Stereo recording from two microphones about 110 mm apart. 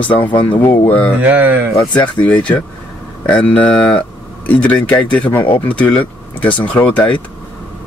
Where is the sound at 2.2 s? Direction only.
10° left (ahead or behind).